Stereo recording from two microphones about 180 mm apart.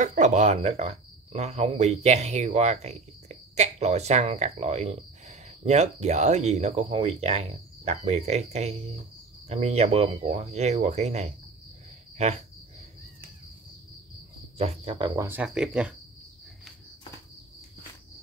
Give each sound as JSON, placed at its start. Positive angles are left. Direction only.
{"t": 0.0, "sound": "speech", "side_deg": -40}
{"t": 14.6, "sound": "speech", "side_deg": -35}
{"t": 15.2, "sound": "speech", "side_deg": -5}